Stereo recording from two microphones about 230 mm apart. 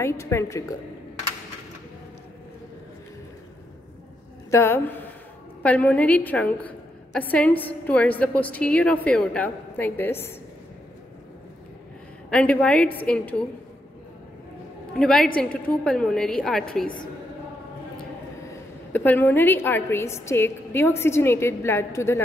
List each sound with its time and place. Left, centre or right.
0.0 s a woman's voice: centre
4.5 s a woman's voice: centre
12.3 s a woman's voice: centre
15.0 s a woman's voice: centre
16.8 s a woman's voice: left
18.9 s a woman's voice: centre